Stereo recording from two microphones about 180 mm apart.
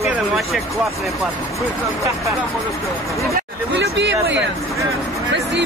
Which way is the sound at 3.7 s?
80° right.